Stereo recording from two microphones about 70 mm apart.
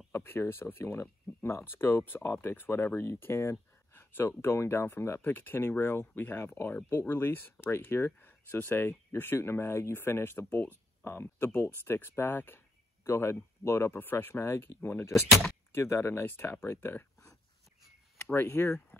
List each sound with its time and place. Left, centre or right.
0.1 s speech: left
18.3 s speech: left